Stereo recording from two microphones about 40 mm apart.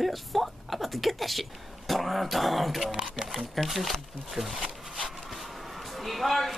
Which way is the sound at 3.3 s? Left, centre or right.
Centre.